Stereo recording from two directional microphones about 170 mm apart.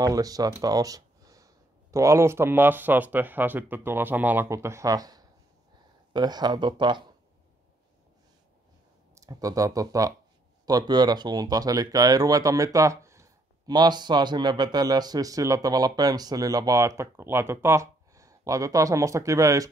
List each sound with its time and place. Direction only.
0.0 s speech: 20° right (ahead or behind)
9.1 s speech: 20° right (ahead or behind)